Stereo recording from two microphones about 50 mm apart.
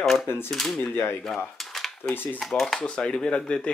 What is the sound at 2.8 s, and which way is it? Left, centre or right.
Speech, centre.